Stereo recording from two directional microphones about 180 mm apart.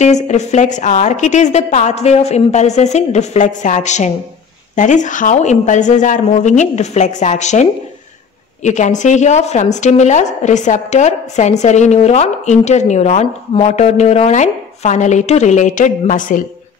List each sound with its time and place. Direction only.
0.0 s a woman's voice: 40° left (ahead or behind)
8.6 s a woman's voice: 40° left (ahead or behind)